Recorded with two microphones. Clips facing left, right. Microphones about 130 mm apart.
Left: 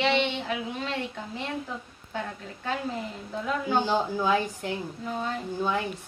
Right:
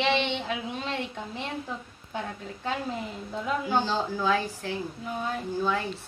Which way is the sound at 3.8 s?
15° left (ahead or behind).